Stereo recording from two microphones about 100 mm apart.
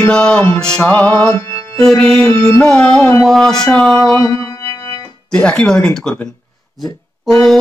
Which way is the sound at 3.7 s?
10° left (ahead or behind).